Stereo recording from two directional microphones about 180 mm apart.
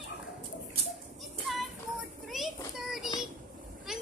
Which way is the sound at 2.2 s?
Centre (ahead or behind).